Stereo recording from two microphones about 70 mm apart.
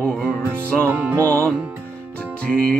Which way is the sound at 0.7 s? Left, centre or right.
Centre.